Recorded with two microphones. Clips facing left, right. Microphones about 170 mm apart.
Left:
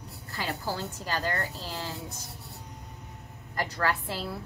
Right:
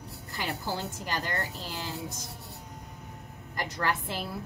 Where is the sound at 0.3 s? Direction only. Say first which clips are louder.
Left 1 dB; 20° right (ahead or behind).